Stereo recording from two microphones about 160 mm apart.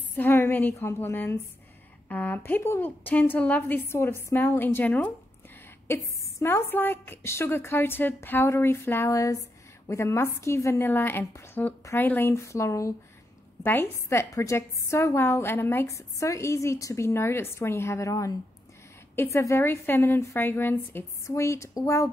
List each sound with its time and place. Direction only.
0.1 s a woman's voice: 15° left (ahead or behind)
6.4 s a woman's voice: 15° left (ahead or behind)